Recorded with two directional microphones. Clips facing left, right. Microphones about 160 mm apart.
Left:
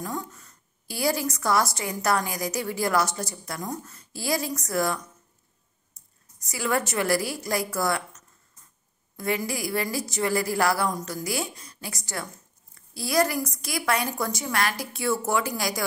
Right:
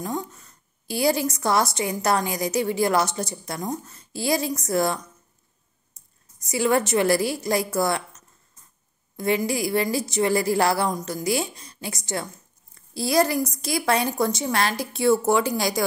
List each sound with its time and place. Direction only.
0.0 s a woman's voice: 20° right (ahead or behind)
6.0 s a sound: 25° right (ahead or behind)
6.4 s a woman's voice: 25° right (ahead or behind)
9.1 s a woman's voice: 25° right (ahead or behind)